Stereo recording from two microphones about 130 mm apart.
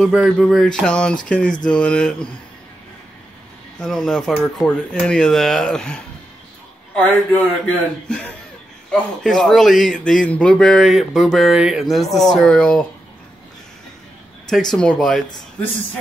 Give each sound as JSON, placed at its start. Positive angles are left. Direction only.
{"t": 0.1, "sound": "speech", "side_deg": -5}
{"t": 3.8, "sound": "a man's voice", "side_deg": 5}
{"t": 14.5, "sound": "a man's voice", "side_deg": 5}